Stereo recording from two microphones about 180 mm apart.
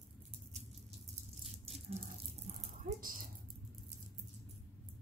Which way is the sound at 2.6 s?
50° right (ahead or behind).